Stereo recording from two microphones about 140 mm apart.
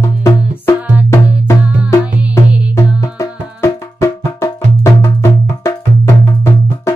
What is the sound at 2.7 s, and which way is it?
Music, 20° left (ahead or behind).